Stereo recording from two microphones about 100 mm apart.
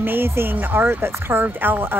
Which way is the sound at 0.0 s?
20° right (ahead or behind).